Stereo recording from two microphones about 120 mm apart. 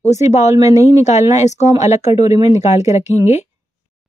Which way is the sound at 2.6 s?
70° left (ahead or behind).